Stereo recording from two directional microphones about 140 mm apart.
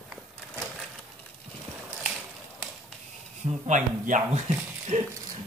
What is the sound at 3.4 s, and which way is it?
Speech, 60° right (ahead or behind).